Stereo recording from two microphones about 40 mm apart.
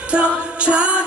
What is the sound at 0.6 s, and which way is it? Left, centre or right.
Music, right.